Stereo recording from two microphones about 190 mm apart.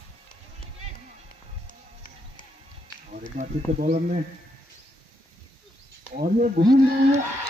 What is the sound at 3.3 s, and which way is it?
Speech, 40° right (ahead or behind).